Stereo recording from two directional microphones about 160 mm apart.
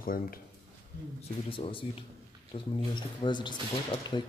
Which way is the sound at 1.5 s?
35° left (ahead or behind).